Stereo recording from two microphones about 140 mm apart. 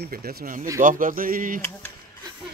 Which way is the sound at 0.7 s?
70° right (ahead or behind).